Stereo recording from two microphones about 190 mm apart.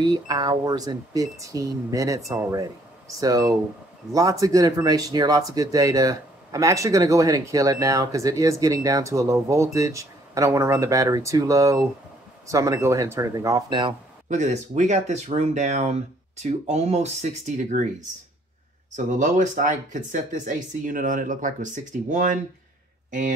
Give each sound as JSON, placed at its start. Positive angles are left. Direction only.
{"t": 0.0, "sound": "speech", "side_deg": -20}
{"t": 14.3, "sound": "speech", "side_deg": -40}
{"t": 18.9, "sound": "speech", "side_deg": -40}